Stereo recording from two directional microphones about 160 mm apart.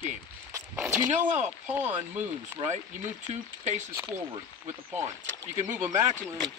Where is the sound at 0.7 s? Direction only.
15° right (ahead or behind).